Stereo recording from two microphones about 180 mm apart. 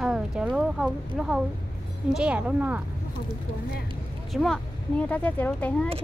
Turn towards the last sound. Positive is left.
turn(degrees=5)  # may be behind; listen again after turning